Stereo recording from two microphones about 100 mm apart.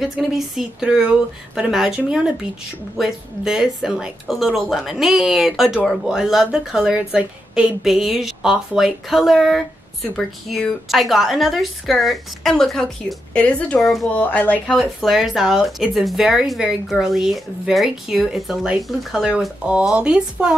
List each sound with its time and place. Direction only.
0.0 s speech: 5° right (ahead or behind); by 14.6 s 15° left (ahead or behind)
14.7 s speech: centre (ahead or behind)